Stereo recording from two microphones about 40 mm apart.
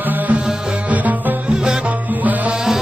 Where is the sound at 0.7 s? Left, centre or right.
Right.